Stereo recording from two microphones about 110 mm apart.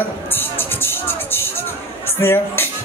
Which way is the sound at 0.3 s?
20° left (ahead or behind).